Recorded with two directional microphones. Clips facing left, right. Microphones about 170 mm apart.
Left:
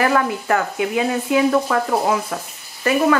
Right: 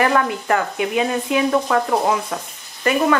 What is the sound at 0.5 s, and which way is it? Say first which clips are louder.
Speech: even; 20° right (ahead or behind).